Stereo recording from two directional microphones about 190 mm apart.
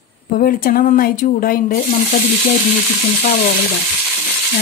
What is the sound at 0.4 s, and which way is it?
Speech, 50° left (ahead or behind).